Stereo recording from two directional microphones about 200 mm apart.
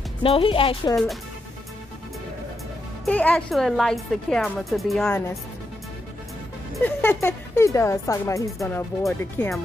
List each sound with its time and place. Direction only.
0.2 s a woman's voice: 25° left (ahead or behind)
3.1 s speech: 5° left (ahead or behind)
6.7 s speech: 10° left (ahead or behind)